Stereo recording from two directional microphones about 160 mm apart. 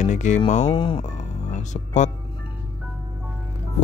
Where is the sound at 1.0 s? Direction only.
50° left (ahead or behind).